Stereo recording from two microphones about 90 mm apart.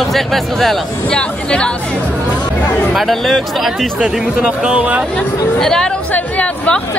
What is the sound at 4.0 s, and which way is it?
Speech, 10° right (ahead or behind).